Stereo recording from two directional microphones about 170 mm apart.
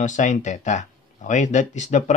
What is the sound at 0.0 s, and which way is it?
Speech, 45° left (ahead or behind).